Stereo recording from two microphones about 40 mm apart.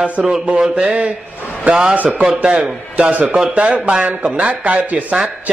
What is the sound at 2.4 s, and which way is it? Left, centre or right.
A man's voice, right.